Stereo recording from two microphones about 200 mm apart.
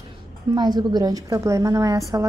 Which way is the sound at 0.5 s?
20° right (ahead or behind).